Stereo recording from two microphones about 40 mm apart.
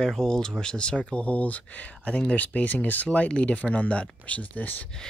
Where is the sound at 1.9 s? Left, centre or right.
Left.